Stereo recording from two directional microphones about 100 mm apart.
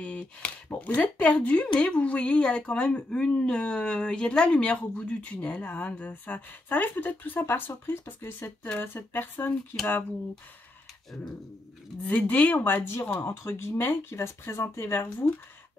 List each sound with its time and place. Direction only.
0.0 s speech: 10° left (ahead or behind)
12.0 s speech: 15° left (ahead or behind)